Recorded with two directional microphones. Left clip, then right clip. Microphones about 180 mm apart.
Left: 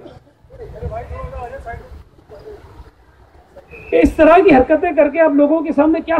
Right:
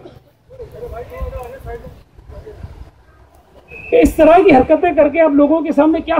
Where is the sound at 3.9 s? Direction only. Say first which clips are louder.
Right 1 dB; 60° right (ahead or behind).